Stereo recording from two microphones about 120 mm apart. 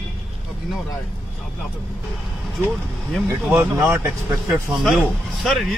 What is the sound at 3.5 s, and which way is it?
Speech, 20° right (ahead or behind).